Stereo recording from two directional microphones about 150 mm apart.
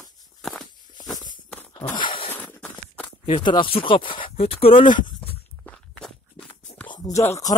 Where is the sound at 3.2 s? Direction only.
35° left (ahead or behind).